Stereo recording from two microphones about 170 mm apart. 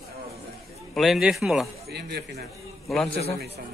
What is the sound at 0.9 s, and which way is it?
Speech, centre (ahead or behind).